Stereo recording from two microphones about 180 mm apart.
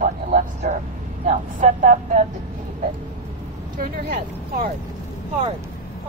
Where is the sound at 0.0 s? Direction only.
45° right (ahead or behind).